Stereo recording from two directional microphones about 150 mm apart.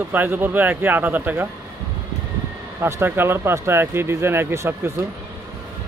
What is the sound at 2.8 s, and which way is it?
Speech, 15° right (ahead or behind).